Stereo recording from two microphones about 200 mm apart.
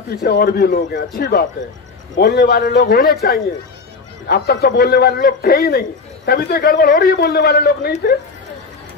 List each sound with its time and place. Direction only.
0.2 s a man's voice: 50° left (ahead or behind)